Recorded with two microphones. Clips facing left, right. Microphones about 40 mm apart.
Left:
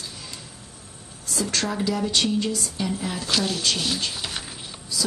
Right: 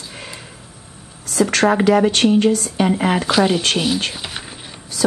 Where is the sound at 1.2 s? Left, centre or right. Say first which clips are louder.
Right 11 dB; right.